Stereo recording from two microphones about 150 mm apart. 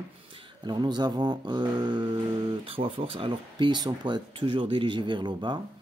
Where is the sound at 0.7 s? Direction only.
30° right (ahead or behind).